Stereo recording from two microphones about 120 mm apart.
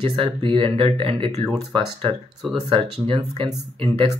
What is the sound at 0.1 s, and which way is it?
Speech, 45° right (ahead or behind).